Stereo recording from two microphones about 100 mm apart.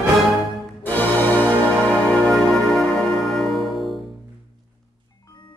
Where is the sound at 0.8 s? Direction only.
20° left (ahead or behind); by 4.1 s centre (ahead or behind).